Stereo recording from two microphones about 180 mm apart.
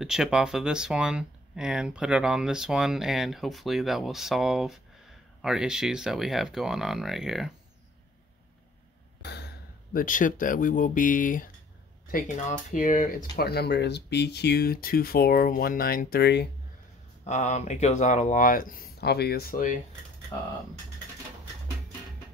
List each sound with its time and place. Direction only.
0.0 s speech: 5° right (ahead or behind)
9.2 s a sound: 65° left (ahead or behind)
9.9 s speech: 50° left (ahead or behind); by 16.4 s 70° left (ahead or behind)
17.2 s speech: 40° left (ahead or behind)